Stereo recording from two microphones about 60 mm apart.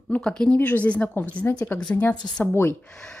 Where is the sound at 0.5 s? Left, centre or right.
Left.